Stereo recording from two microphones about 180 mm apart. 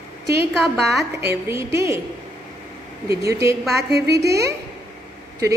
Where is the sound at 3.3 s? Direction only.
15° right (ahead or behind).